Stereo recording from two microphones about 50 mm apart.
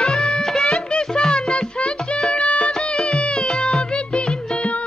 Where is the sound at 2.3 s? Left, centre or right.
Left.